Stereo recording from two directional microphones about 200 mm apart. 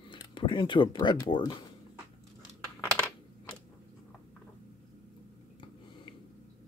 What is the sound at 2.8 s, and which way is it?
Computer keyboard, 5° left (ahead or behind).